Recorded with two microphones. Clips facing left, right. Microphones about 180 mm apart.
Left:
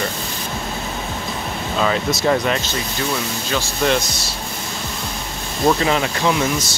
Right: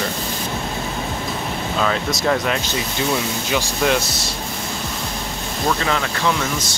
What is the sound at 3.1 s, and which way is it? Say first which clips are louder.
Speech: right 2 dB; 15° right (ahead or behind).